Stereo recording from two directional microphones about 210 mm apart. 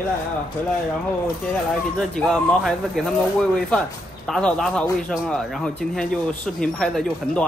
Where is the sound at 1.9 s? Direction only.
5° left (ahead or behind).